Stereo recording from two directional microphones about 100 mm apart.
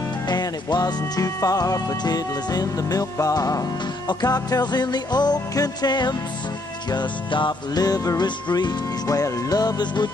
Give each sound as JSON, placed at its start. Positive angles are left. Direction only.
{"t": 0.3, "sound": "music", "side_deg": 45}